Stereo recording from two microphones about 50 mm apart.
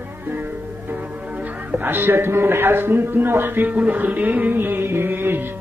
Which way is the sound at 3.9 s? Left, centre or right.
Right.